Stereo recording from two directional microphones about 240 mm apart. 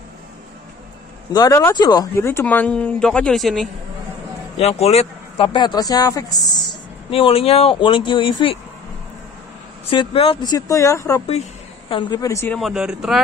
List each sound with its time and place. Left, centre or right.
1.3 s speech: centre
4.6 s speech: left
9.8 s speech: left
12.5 s speech: centre